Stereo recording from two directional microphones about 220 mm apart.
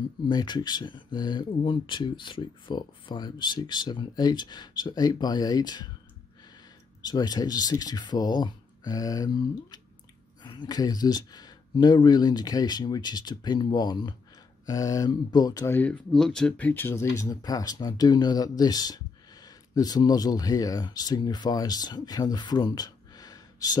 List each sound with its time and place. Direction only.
0.3 s speech: 20° left (ahead or behind)
7.0 s speech: 20° left (ahead or behind)